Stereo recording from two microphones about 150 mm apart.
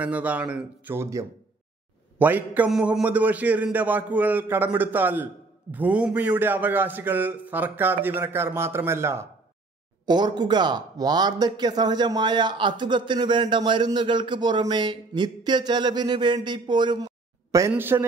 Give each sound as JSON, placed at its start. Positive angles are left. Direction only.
{"t": 0.0, "sound": "a man's voice", "side_deg": -10}
{"t": 10.0, "sound": "speech", "side_deg": -30}